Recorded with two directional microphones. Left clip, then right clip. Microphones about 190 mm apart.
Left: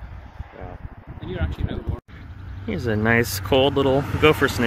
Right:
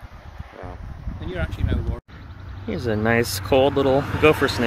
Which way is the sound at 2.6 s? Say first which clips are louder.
Even; centre (ahead or behind).